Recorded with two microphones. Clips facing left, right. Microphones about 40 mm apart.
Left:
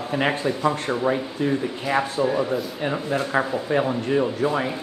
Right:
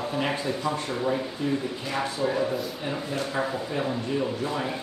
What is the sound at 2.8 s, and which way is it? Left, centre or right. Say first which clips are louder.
Speech: left 5 dB; left.